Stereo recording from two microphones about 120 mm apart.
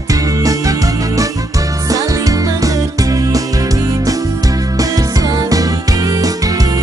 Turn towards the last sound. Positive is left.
turn(degrees=-30)  # may be behind; listen again after turning